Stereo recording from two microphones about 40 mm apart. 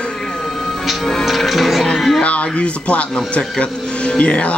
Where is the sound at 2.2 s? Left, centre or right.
Left.